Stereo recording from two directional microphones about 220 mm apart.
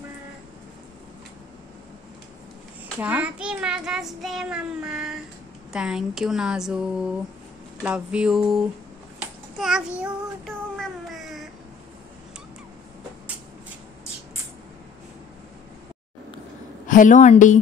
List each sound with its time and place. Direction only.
3.0 s a child's voice: 5° right (ahead or behind)
9.6 s child singing: centre (ahead or behind)
16.8 s a woman's voice: 35° left (ahead or behind)